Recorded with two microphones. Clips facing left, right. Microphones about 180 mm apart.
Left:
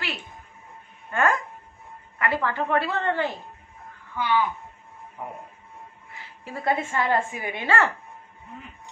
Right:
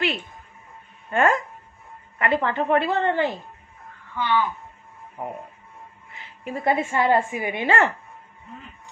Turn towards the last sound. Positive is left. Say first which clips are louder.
# right 3 dB
turn(degrees=-20)  # may be behind; listen again after turning